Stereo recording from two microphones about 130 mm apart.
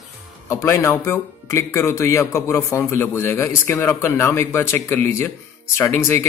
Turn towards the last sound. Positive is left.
turn(degrees=20)  # may be behind; listen again after turning